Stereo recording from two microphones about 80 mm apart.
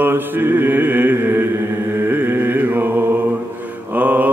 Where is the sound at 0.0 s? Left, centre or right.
Right.